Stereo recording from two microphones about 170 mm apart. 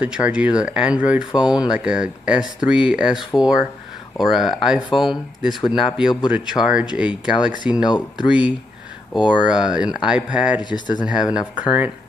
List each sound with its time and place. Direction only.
0.0 s speech: 5° right (ahead or behind)
10.6 s speech: 25° left (ahead or behind)
11.3 s speech: 5° right (ahead or behind)